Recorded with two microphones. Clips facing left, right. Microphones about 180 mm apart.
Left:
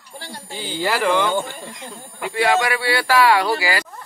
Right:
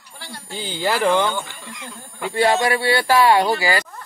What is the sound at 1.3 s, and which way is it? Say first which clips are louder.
Speech: left 6 dB; 45° left (ahead or behind).